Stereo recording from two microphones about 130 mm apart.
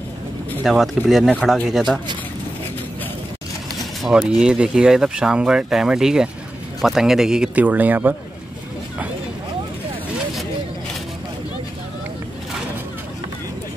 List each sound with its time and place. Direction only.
0.7 s speech: centre (ahead or behind)
4.0 s speech: 5° right (ahead or behind)